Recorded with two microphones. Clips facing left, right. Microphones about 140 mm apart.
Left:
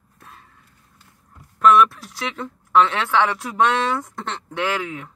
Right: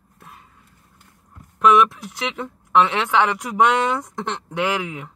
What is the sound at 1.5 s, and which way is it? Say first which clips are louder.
Speech: left 1 dB; 15° right (ahead or behind).